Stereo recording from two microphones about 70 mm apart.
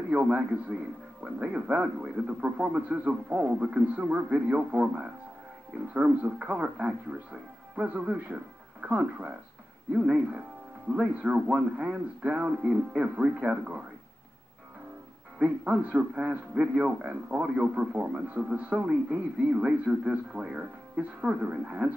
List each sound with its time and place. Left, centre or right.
0.1 s a man's voice: right
15.3 s a man's voice: centre